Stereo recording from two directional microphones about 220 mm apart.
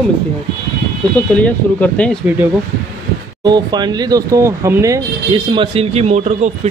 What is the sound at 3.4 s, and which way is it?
Speech, 20° right (ahead or behind).